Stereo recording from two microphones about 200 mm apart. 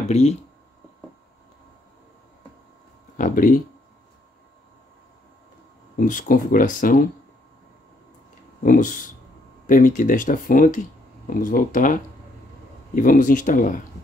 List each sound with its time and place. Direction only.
0.1 s speech: 30° left (ahead or behind)
3.2 s speech: 40° left (ahead or behind)
5.9 s speech: 40° left (ahead or behind)
8.6 s speech: 40° left (ahead or behind)